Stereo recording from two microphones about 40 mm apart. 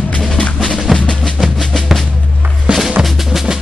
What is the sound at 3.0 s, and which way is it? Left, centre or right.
Drum, centre.